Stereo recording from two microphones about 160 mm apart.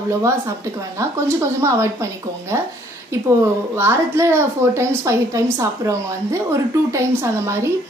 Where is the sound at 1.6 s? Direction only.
20° right (ahead or behind).